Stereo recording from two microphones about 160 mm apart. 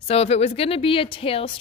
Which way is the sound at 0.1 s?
40° left (ahead or behind).